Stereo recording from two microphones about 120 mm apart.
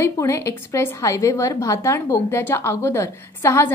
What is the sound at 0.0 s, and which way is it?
A woman's voice, 25° left (ahead or behind).